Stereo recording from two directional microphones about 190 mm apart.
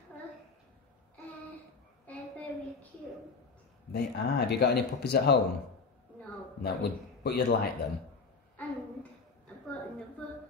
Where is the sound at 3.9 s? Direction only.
60° left (ahead or behind).